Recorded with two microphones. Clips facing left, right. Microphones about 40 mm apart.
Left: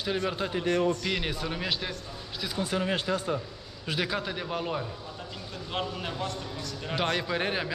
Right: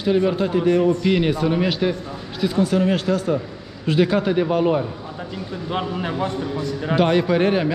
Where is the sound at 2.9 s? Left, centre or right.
Centre.